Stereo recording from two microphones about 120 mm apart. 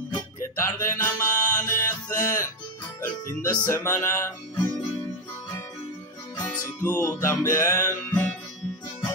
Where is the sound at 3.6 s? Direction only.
25° left (ahead or behind).